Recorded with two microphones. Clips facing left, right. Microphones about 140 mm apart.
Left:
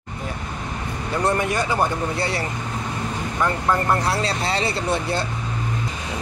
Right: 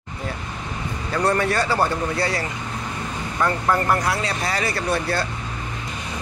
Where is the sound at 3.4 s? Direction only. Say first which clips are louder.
Right 1 dB; 25° left (ahead or behind).